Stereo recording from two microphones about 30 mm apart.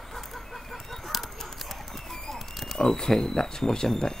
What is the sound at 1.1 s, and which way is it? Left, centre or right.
Chicken, centre.